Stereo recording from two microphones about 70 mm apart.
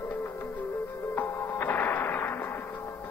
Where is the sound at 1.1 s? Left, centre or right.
Left.